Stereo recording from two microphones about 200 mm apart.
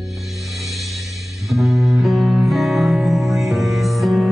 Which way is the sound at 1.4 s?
Centre (ahead or behind).